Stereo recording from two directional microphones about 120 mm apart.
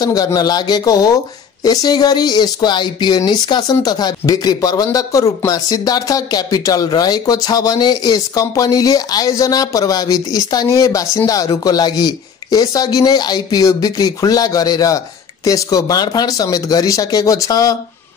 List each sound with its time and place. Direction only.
0.0 s a man's voice: 30° left (ahead or behind)